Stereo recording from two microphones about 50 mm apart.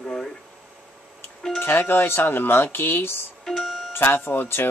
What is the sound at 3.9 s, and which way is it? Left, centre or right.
Speech, left.